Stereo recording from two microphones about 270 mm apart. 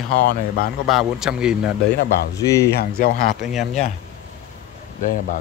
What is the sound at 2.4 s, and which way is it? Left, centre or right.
Speech, centre.